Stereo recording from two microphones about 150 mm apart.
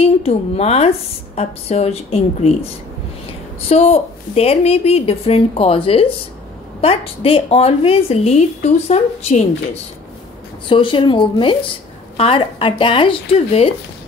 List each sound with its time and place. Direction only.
0.0 s a woman's voice: 40° left (ahead or behind)
10.7 s a woman's voice: 35° left (ahead or behind)